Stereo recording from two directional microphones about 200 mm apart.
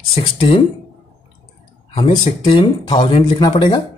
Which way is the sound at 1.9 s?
25° left (ahead or behind).